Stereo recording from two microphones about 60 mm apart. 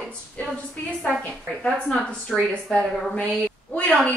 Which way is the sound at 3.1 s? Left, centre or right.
Left.